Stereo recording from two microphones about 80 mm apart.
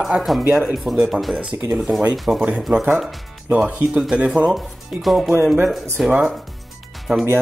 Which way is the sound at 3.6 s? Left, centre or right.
Centre.